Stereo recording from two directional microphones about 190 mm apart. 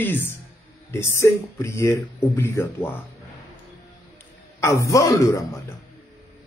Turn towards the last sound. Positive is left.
turn(degrees=15)  # may be behind; listen again after turning